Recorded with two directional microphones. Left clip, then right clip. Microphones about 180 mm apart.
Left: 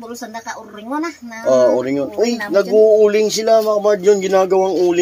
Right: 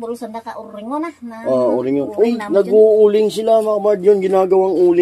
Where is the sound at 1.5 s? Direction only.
Centre (ahead or behind).